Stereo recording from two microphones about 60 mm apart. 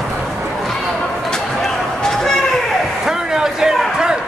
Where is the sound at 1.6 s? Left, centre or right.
Centre.